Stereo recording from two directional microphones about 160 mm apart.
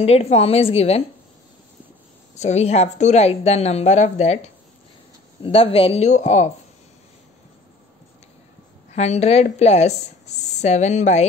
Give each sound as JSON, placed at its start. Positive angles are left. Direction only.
{"t": 0.0, "sound": "speech", "side_deg": 40}
{"t": 2.3, "sound": "a woman's voice", "side_deg": 45}
{"t": 8.9, "sound": "a woman's voice", "side_deg": 45}